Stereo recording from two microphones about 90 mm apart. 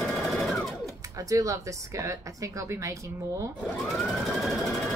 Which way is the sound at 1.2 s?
40° right (ahead or behind).